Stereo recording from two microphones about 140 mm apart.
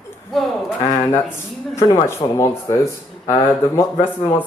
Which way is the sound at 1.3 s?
20° left (ahead or behind).